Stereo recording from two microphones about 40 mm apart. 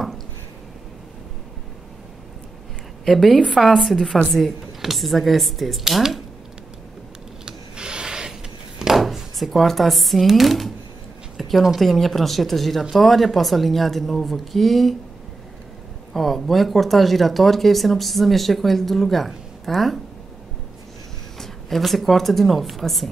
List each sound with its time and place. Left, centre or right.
3.1 s a woman's voice: centre
7.4 s wood: right
9.0 s speech: centre
11.3 s a sound: centre
11.8 s speech: centre
16.1 s speech: centre
21.4 s speech: centre